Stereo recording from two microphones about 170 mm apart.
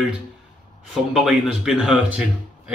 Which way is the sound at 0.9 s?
5° right (ahead or behind).